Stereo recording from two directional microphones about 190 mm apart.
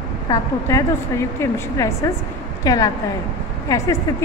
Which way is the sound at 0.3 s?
15° left (ahead or behind).